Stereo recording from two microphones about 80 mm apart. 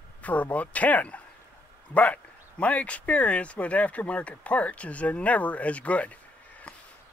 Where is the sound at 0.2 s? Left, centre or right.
Centre.